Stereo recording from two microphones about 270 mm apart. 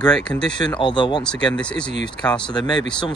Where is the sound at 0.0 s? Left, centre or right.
Centre.